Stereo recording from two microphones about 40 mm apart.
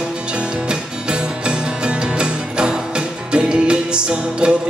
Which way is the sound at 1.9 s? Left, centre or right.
Right.